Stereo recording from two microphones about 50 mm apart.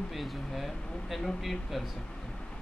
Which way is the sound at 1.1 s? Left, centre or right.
Centre.